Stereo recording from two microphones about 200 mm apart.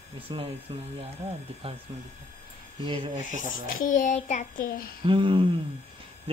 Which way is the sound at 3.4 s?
40° left (ahead or behind).